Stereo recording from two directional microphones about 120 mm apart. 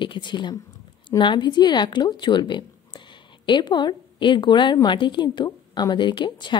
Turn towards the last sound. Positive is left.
turn(degrees=40)  # may be behind; listen again after turning